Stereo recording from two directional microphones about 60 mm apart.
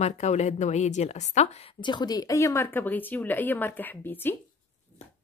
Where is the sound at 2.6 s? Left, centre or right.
Left.